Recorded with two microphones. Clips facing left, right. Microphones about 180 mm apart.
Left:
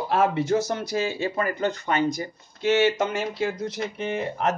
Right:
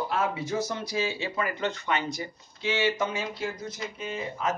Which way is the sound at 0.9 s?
50° left (ahead or behind).